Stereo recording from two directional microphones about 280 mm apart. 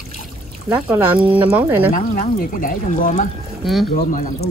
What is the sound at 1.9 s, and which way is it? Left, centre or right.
Speech, left.